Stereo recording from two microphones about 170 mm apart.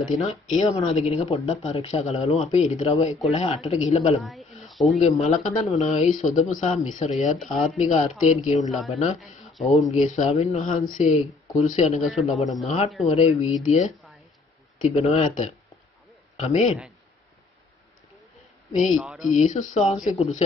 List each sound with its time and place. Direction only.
0.0 s speech: 40° left (ahead or behind)
4.2 s snake: centre (ahead or behind)
5.2 s speech: 40° left (ahead or behind)
8.5 s a man's voice: centre (ahead or behind)
10.0 s speech: 45° left (ahead or behind)
12.0 s a man's voice: centre (ahead or behind)
12.6 s a man's voice: 40° left (ahead or behind)
18.9 s a man's voice: centre (ahead or behind)
19.3 s speech: 45° left (ahead or behind)